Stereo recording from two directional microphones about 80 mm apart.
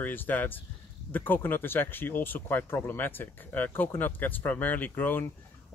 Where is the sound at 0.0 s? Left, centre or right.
Left.